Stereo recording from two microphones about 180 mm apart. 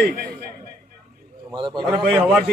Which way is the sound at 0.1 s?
60° right (ahead or behind).